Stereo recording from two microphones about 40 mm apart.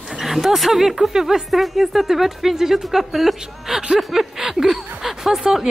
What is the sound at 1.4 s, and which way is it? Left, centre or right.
Speech, centre.